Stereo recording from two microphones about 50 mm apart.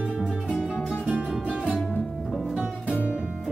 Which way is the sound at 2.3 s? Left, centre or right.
Centre.